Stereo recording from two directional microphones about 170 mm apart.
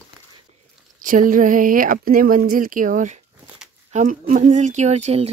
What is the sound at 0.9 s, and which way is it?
Speech, 50° right (ahead or behind).